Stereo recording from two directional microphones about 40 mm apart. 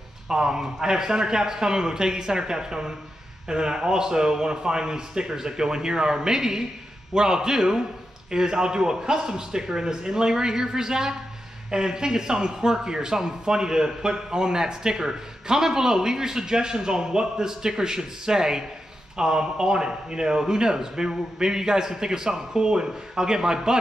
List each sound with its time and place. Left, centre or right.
0.3 s speech: centre